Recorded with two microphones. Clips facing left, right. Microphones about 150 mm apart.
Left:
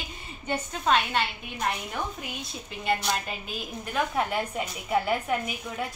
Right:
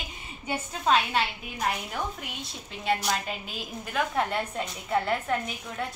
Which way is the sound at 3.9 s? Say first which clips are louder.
Even; 5° left (ahead or behind).